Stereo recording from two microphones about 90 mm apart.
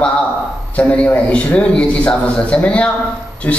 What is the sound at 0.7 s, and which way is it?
A man's voice, 15° left (ahead or behind).